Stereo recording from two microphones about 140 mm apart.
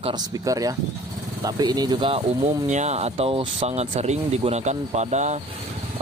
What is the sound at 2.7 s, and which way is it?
Speech, 55° right (ahead or behind).